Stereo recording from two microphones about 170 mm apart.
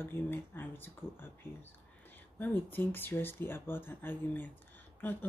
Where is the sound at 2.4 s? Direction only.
10° left (ahead or behind).